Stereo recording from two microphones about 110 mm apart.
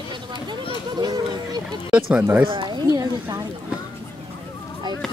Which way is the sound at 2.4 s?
45° right (ahead or behind).